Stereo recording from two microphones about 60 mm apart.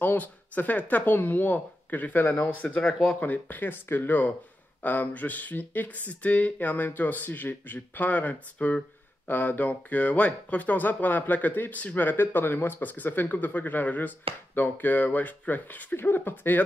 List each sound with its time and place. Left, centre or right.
0.0 s speech: left
3.2 s speech: left